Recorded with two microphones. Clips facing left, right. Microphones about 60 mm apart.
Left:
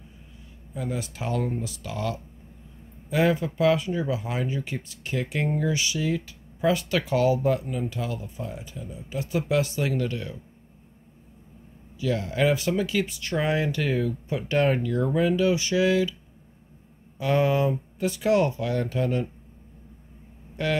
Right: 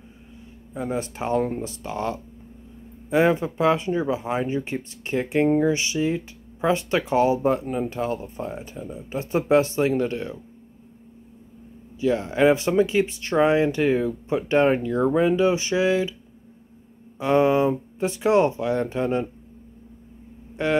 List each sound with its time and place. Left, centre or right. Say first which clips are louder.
0.7 s speech: right 4 dB; right
12.0 s speech: right 5 dB; right
17.2 s speech: right 4 dB; right
20.6 s speech: right 3 dB; right